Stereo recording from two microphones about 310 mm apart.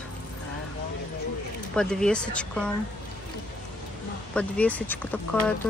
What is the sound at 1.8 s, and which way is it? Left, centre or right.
Speech, centre.